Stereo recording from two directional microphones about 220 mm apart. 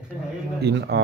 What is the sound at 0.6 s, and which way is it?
Speech, 50° right (ahead or behind).